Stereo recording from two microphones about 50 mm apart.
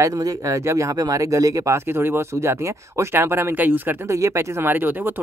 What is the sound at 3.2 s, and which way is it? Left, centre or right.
Speech, right.